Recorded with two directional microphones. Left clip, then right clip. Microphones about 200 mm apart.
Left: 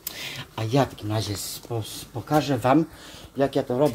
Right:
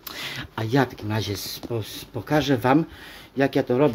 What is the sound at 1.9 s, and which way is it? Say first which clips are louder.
Speech: left 1 dB; 35° right (ahead or behind).